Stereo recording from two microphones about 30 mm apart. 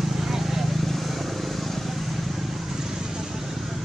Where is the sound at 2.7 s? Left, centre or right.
Centre.